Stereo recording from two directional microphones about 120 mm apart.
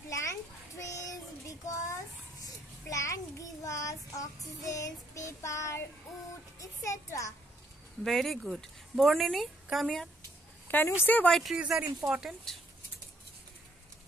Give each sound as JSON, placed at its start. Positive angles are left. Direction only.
{"t": 0.1, "sound": "children playing", "side_deg": 25}
{"t": 1.7, "sound": "a child's voice", "side_deg": 25}
{"t": 2.4, "sound": "child singing", "side_deg": 25}
{"t": 8.0, "sound": "speech", "side_deg": 0}
{"t": 10.7, "sound": "speech", "side_deg": 20}
{"t": 11.3, "sound": "speech", "side_deg": -5}